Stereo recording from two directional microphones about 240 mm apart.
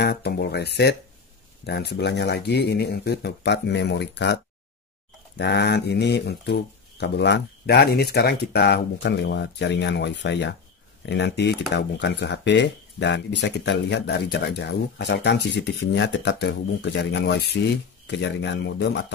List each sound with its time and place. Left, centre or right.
0.0 s speech: left
5.4 s speech: left